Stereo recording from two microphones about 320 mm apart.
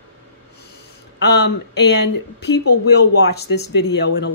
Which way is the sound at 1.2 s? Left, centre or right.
Left.